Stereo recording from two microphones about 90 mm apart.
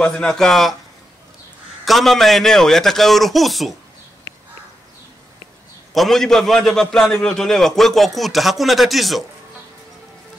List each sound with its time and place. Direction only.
0.0 s a man's voice: 5° left (ahead or behind)
1.9 s a man's voice: centre (ahead or behind)
5.9 s a man's voice: 5° left (ahead or behind)